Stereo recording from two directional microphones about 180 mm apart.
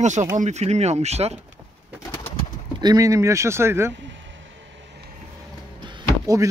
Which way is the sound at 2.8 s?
20° right (ahead or behind).